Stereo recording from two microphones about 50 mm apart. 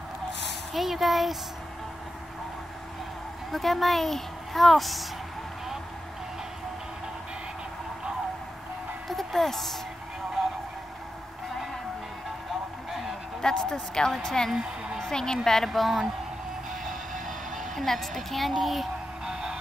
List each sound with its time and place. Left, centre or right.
0.7 s a woman's voice: centre
3.5 s a woman's voice: centre
9.1 s speech: centre
13.4 s a woman's voice: centre
14.5 s a woman's voice: centre
15.0 s a sound: centre
15.4 s a woman's voice: centre
17.3 s speech: centre
19.2 s music: centre